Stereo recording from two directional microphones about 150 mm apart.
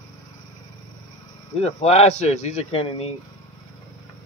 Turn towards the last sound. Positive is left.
turn(degrees=40)  # may be behind; listen again after turning